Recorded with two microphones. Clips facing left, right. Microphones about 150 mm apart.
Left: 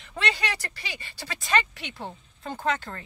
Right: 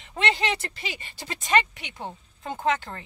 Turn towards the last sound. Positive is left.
turn(degrees=-15)  # may be behind; listen again after turning